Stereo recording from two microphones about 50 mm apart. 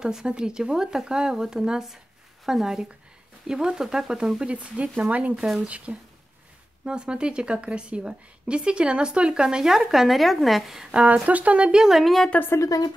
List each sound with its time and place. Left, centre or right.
0.0 s a woman's voice: centre
4.4 s a woman's voice: right; by 10.8 s centre
10.9 s speech: right
11.9 s a woman's voice: centre